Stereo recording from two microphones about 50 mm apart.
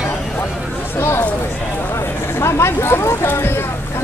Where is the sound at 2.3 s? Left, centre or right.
Left.